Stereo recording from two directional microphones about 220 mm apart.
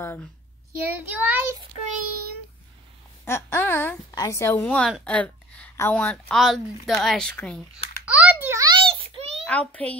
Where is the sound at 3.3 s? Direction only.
10° left (ahead or behind).